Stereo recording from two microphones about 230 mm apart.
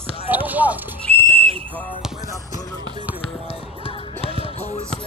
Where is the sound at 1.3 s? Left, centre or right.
Right.